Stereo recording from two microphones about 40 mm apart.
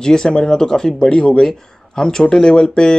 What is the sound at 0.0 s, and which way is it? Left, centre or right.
Speech, centre.